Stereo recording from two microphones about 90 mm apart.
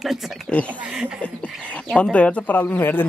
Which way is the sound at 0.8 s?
10° right (ahead or behind).